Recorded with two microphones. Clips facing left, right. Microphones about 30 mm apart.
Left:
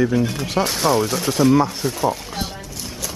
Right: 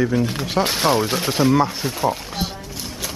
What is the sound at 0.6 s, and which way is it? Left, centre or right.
Speech, right.